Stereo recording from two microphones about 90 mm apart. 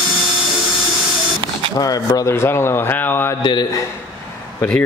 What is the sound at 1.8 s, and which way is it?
Speech, 45° left (ahead or behind).